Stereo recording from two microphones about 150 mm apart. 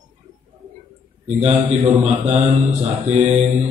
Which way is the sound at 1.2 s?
45° right (ahead or behind).